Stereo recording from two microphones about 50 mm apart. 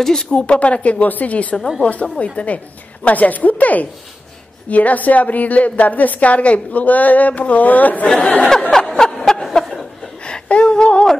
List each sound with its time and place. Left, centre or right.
0.0 s a woman's voice: centre; by 8.5 s left
8.7 s snicker: centre
10.2 s a sound: centre